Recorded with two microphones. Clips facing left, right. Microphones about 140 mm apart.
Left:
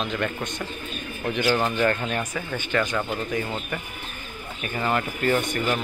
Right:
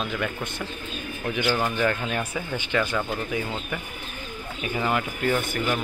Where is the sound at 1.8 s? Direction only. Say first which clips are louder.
Left 1 dB; 10° right (ahead or behind).